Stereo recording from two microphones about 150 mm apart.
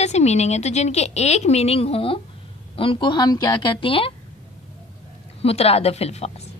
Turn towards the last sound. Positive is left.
turn(degrees=45)  # may be behind; listen again after turning